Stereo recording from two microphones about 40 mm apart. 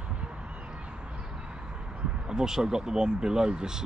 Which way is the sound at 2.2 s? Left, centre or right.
Centre.